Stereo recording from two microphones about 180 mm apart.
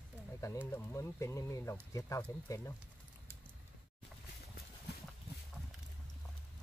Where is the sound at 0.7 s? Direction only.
15° left (ahead or behind).